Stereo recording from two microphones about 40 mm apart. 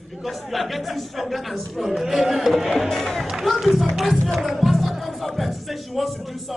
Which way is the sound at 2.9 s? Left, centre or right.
Centre.